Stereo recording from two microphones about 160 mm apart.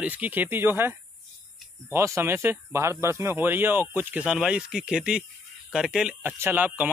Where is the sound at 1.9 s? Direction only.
15° right (ahead or behind).